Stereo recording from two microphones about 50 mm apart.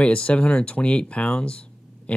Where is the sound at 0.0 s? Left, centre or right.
Left.